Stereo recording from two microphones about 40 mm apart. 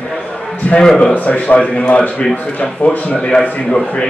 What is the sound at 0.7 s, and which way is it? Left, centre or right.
A man's voice, centre.